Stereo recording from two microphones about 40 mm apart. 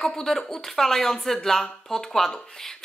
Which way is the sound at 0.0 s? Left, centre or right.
Centre.